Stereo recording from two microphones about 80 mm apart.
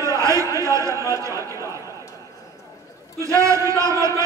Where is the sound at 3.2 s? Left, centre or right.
Right.